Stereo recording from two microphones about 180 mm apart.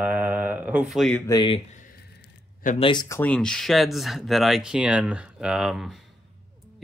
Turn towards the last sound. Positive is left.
turn(degrees=0)  # may be behind; listen again after turning